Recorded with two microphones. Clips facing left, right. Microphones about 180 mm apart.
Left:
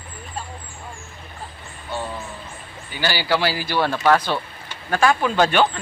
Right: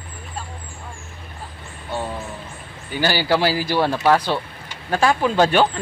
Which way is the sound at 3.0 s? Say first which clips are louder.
Right 3 dB; 45° right (ahead or behind).